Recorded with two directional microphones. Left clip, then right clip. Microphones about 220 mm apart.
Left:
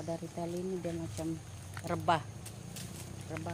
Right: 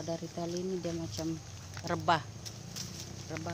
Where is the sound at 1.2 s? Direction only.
25° right (ahead or behind).